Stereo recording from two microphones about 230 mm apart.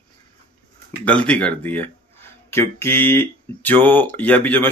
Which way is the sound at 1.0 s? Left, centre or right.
Centre.